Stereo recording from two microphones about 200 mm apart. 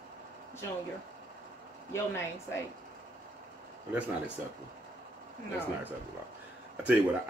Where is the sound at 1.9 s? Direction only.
15° left (ahead or behind).